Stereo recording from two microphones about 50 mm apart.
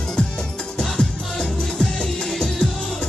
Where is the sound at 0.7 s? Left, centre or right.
Centre.